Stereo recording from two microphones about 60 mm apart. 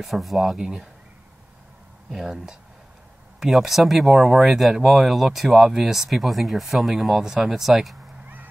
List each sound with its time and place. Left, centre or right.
0.0 s speech: centre
2.0 s speech: centre